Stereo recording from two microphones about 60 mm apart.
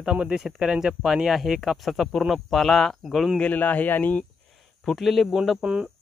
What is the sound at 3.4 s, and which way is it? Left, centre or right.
Speech, left.